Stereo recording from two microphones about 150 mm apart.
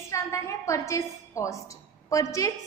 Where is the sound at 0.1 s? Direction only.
20° left (ahead or behind).